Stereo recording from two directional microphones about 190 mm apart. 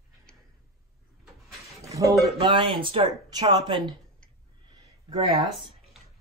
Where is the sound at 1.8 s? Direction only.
15° right (ahead or behind).